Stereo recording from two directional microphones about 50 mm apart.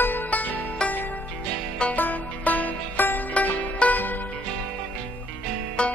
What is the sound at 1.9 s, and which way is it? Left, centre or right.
Music, left.